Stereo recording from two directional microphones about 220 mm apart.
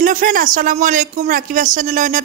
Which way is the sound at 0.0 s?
40° right (ahead or behind).